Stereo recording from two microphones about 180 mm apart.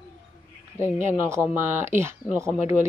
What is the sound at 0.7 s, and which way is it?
Speech, 15° right (ahead or behind).